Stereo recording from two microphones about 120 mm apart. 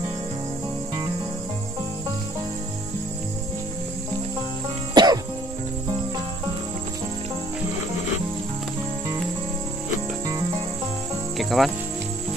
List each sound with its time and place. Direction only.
4.9 s music: 35° right (ahead or behind)
11.3 s cricket: centre (ahead or behind)